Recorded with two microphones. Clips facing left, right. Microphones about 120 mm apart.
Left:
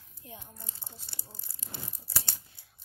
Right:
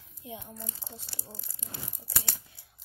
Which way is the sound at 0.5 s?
90° right.